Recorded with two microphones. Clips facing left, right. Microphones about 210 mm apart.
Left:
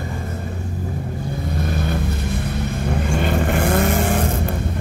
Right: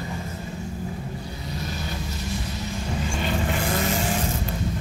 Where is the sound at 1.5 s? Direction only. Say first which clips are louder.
Left 8 dB; 55° left (ahead or behind).